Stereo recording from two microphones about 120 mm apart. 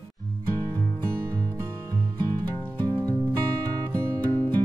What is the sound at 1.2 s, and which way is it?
Music, 25° right (ahead or behind).